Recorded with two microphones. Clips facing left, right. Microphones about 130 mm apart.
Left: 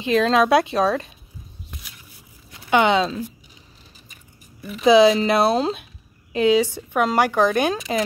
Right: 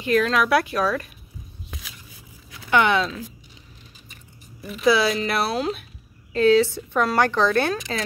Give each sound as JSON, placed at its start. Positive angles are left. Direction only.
{"t": 0.0, "sound": "speech", "side_deg": 25}
{"t": 1.7, "sound": "a sound", "side_deg": -90}
{"t": 2.7, "sound": "speech", "side_deg": 20}
{"t": 4.8, "sound": "speech", "side_deg": 20}
{"t": 6.3, "sound": "a woman's voice", "side_deg": 15}